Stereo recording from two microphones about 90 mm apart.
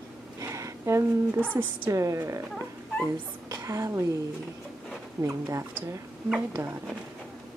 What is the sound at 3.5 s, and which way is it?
Speech, 35° right (ahead or behind).